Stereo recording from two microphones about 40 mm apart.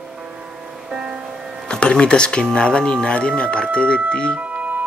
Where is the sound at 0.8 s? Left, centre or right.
Right.